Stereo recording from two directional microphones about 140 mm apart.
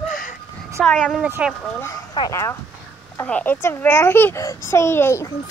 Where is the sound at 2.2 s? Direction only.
30° left (ahead or behind).